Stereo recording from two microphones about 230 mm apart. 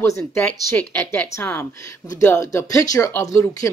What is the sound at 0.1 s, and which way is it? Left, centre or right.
Speech, centre.